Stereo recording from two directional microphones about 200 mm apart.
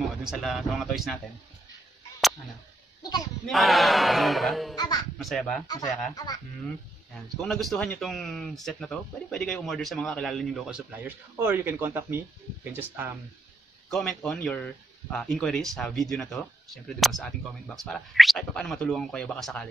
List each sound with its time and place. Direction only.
0.2 s speech: centre (ahead or behind)
3.0 s goat: 20° left (ahead or behind)
3.4 s speech: centre (ahead or behind)
5.7 s speech: 20° left (ahead or behind)
7.3 s speech: centre (ahead or behind)
13.9 s speech: centre (ahead or behind)